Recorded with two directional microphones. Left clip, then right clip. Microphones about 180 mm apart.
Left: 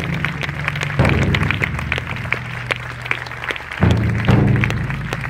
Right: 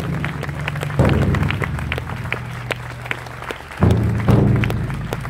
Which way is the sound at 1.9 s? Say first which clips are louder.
Left 4 dB; 60° right (ahead or behind).